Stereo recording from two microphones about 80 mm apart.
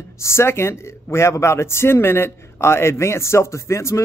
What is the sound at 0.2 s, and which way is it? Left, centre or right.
Speech, left.